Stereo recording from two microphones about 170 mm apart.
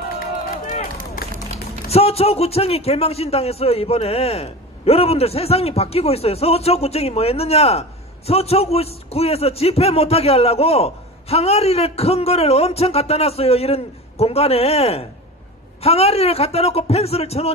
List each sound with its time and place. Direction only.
0.7 s run: 55° left (ahead or behind)
1.9 s a man's voice: 35° left (ahead or behind)